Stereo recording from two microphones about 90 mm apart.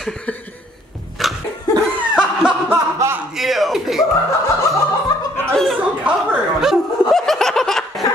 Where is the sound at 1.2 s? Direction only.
Centre (ahead or behind).